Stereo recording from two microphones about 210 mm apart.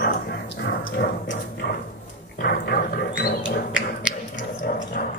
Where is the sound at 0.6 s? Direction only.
50° left (ahead or behind).